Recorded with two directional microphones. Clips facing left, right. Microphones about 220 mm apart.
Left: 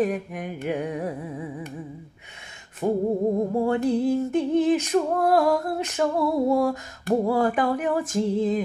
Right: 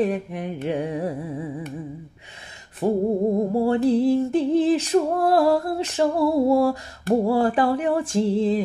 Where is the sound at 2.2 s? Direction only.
35° right (ahead or behind).